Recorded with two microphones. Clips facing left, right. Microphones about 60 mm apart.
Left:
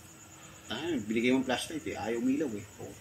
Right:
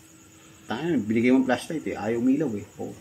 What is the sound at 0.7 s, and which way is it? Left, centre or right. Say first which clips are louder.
Speech: right 8 dB; right.